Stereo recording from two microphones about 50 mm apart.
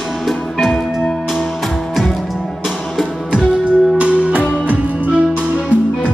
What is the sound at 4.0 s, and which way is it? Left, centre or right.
Music, right.